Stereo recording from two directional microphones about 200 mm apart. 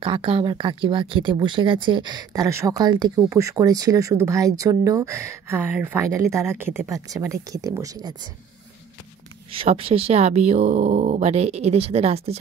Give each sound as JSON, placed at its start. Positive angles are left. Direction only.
{"t": 0.0, "sound": "speech", "side_deg": -25}
{"t": 9.5, "sound": "speech", "side_deg": -25}